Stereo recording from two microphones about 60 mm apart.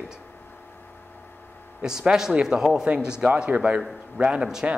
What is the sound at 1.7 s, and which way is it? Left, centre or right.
Speech, centre.